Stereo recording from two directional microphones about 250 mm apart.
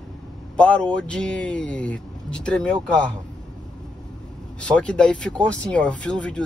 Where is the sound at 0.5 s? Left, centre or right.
Centre.